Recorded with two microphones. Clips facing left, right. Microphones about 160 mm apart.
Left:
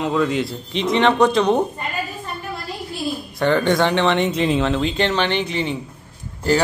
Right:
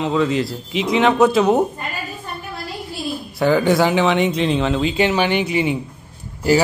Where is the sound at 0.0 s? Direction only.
Centre (ahead or behind).